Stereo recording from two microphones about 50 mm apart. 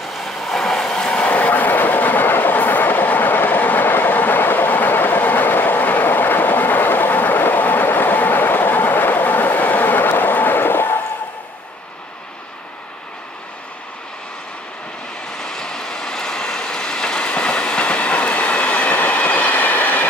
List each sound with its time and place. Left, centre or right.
0.0 s train: centre
0.8 s vehicle: centre
1.3 s train: left
15.3 s train: centre; by 20.1 s left